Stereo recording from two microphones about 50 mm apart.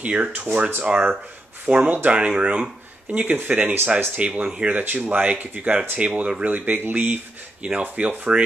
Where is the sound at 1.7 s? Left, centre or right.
Centre.